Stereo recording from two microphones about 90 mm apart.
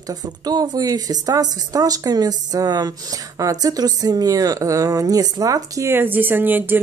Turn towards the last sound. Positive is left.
turn(degrees=-20)  # may be behind; listen again after turning